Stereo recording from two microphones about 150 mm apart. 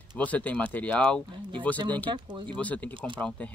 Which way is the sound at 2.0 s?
30° right (ahead or behind).